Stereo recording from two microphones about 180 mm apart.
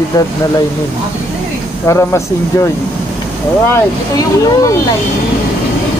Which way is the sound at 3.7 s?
20° left (ahead or behind).